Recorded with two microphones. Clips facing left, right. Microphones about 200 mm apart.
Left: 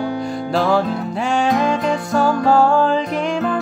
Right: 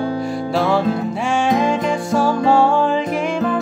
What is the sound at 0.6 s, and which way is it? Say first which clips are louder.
Music: even; centre (ahead or behind).